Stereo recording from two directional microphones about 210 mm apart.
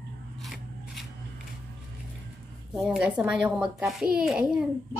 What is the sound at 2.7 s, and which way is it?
A woman's voice, 5° right (ahead or behind).